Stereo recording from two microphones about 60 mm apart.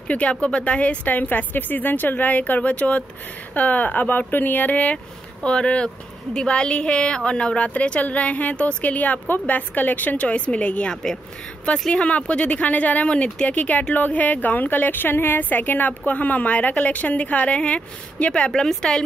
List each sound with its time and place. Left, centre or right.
0.1 s a woman's voice: left
5.4 s a woman's voice: centre